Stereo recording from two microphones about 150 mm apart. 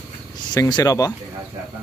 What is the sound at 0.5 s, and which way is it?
Speech, 25° left (ahead or behind).